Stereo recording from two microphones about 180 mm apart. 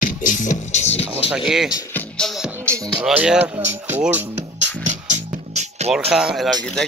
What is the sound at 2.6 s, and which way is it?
Music, 15° right (ahead or behind).